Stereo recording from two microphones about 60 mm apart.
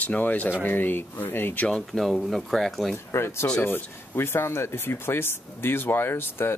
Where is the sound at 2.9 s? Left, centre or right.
Left.